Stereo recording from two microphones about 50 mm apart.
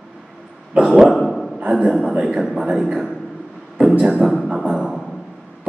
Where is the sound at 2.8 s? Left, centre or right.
Centre.